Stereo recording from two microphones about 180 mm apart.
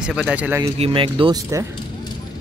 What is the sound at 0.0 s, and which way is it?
Speech, 5° right (ahead or behind).